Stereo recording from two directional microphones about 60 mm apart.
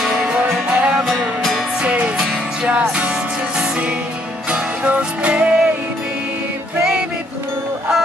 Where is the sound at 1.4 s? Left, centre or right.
Centre.